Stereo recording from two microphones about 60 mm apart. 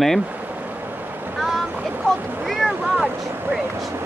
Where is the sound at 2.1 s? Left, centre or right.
Right.